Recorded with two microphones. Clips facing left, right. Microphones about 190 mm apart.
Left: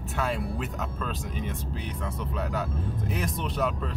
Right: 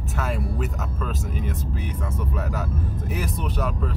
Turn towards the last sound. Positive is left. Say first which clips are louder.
# right 1 dB
turn(degrees=0)  # may be behind; listen again after turning